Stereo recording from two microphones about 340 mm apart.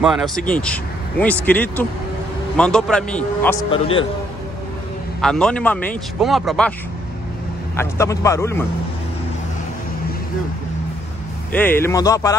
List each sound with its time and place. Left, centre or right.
0.0 s speech: centre
3.7 s speech: centre
5.2 s speech: centre
7.7 s speech: centre
11.5 s speech: centre